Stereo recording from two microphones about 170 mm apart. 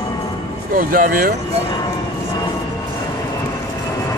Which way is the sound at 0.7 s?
55° right (ahead or behind).